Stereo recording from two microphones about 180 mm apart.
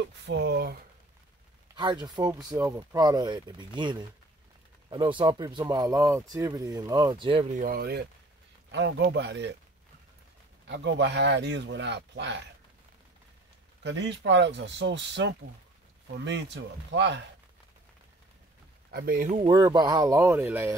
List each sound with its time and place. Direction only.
0.3 s speech: 70° right (ahead or behind)
1.8 s speech: 25° right (ahead or behind)
7.5 s speech: 50° right (ahead or behind)
8.7 s speech: 75° right (ahead or behind)
10.7 s speech: 75° right (ahead or behind)
13.8 s speech: 80° right
18.9 s speech: 55° right (ahead or behind)
19.4 s speech: 25° right (ahead or behind)